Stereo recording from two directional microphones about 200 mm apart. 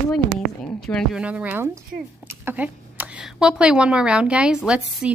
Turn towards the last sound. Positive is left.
turn(degrees=-5)  # may be behind; listen again after turning